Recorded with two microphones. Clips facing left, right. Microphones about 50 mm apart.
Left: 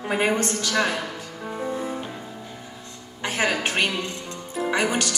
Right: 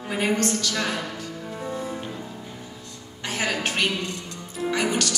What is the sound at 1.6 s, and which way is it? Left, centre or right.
Music, centre.